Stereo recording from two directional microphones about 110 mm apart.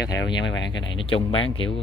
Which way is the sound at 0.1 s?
45° left (ahead or behind).